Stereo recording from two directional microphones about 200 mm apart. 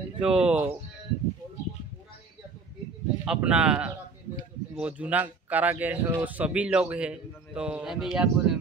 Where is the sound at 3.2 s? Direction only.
5° right (ahead or behind).